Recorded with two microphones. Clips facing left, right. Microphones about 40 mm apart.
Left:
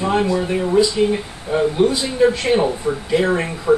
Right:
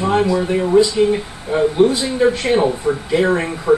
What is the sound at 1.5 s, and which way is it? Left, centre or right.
A man's voice, centre.